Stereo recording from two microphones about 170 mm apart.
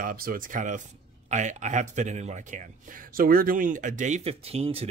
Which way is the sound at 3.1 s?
55° right (ahead or behind).